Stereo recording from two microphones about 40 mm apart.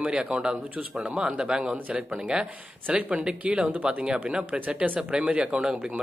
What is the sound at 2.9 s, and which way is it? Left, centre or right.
A man's voice, right.